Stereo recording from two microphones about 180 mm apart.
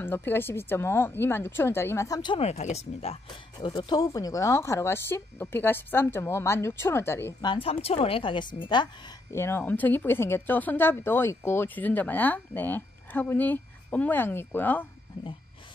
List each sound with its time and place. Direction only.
0.0 s speech: 10° left (ahead or behind)
2.4 s speech: 35° left (ahead or behind); by 7.3 s 15° left (ahead or behind)
7.4 s a woman's voice: 30° left (ahead or behind)
9.3 s speech: 15° left (ahead or behind)